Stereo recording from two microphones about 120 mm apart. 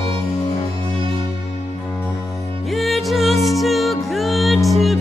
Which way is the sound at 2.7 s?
Centre (ahead or behind).